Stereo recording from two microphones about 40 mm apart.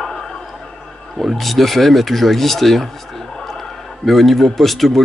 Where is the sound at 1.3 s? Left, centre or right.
Centre.